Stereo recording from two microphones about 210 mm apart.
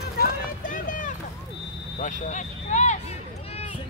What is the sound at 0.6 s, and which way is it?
Run, 40° left (ahead or behind).